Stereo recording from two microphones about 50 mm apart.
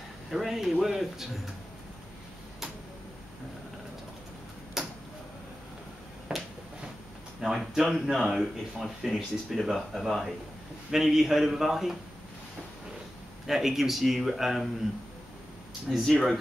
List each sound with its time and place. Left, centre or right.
0.3 s a man's voice: centre
4.8 s tick-tock: centre
6.3 s finger snapping: centre
7.4 s a man's voice: centre
13.5 s speech: centre
16.1 s speech: centre